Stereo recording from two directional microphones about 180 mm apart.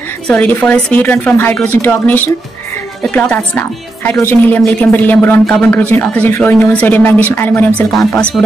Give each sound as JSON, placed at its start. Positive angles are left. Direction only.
{"t": 0.3, "sound": "speech", "side_deg": 10}